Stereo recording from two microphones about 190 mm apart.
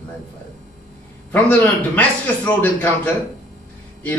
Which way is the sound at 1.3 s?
10° left (ahead or behind).